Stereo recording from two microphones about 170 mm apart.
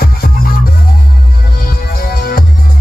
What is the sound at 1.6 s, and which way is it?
Music, 60° left (ahead or behind).